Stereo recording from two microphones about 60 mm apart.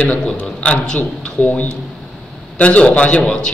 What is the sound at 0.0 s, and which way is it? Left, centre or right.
A man's voice, centre.